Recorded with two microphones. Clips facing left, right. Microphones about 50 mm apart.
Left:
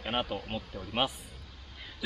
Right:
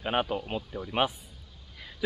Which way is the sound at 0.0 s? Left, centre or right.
Centre.